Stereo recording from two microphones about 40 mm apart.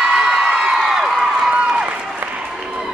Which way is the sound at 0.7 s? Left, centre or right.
Centre.